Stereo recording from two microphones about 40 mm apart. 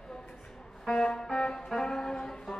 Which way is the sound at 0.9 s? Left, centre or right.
Centre.